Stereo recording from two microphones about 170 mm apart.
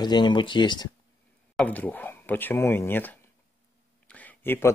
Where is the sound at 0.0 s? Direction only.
25° left (ahead or behind).